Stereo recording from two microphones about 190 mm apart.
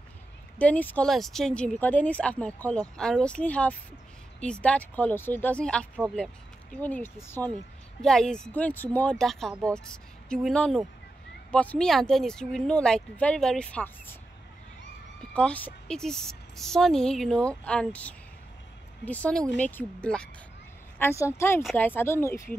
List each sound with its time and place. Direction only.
0.6 s a woman's voice: 10° left (ahead or behind)
15.3 s a woman's voice: 5° left (ahead or behind)